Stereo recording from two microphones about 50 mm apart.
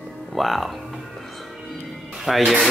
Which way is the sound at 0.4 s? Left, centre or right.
Centre.